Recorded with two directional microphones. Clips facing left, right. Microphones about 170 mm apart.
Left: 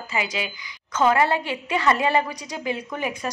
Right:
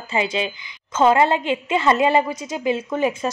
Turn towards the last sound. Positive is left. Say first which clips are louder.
# right 7 dB
turn(degrees=-25)  # may be behind; listen again after turning